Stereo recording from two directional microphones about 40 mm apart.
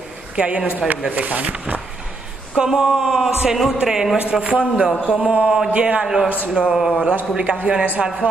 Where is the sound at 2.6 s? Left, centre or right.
Centre.